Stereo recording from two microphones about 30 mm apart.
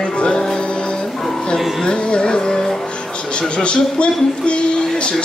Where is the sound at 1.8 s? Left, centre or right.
Left.